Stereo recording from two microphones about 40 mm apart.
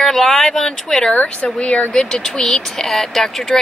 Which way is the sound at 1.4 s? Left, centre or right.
Left.